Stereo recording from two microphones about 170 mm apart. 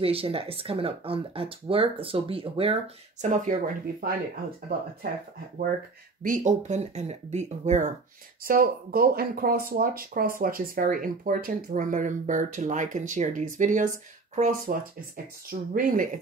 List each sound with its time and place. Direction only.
0.0 s speech: 35° right (ahead or behind); by 4.1 s 55° right (ahead or behind)
6.2 s speech: 50° right (ahead or behind)
8.5 s speech: 60° right (ahead or behind)